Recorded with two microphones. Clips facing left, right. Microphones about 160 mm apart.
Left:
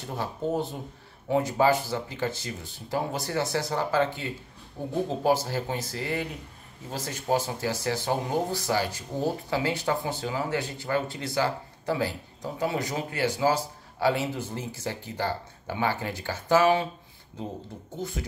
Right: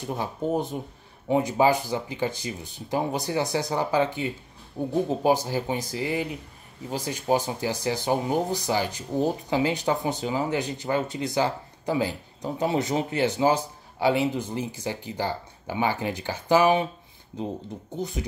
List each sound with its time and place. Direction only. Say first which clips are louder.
0.0 s speech: right 2 dB; 15° right (ahead or behind)
17.9 s speech: right 3 dB; 20° right (ahead or behind)